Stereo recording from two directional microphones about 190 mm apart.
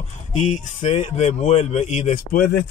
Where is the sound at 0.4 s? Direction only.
35° left (ahead or behind).